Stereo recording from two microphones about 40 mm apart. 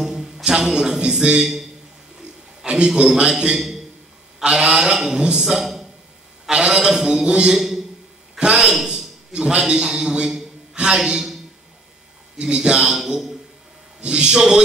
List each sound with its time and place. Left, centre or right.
0.0 s a sound: centre
1.4 s a man's voice: centre
2.6 s a sound: right
3.0 s a man's voice: centre
7.2 s a man's voice: right
7.5 s a man's voice: centre
8.4 s a man's voice: right
8.8 s a sound: centre
9.6 s a man's voice: centre
12.4 s a man's voice: right
12.9 s a man's voice: centre
14.0 s a man's voice: right